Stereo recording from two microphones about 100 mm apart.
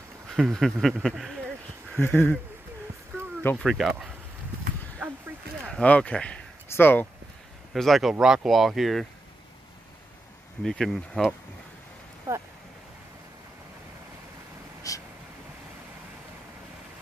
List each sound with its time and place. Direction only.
0.4 s speech: centre (ahead or behind)
2.0 s speech: 20° left (ahead or behind)
3.5 s speech: centre (ahead or behind)
5.7 s speech: 10° left (ahead or behind)
7.7 s speech: centre (ahead or behind)
10.6 s speech: 5° left (ahead or behind)
12.3 s speech: 30° right (ahead or behind)
14.8 s a sound: 35° left (ahead or behind)